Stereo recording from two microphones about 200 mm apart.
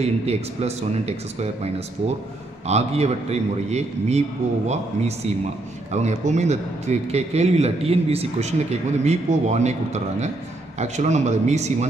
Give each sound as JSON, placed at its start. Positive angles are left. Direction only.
{"t": 0.0, "sound": "a man's voice", "side_deg": -30}